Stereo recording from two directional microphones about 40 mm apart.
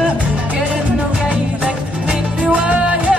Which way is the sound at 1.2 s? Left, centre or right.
Right.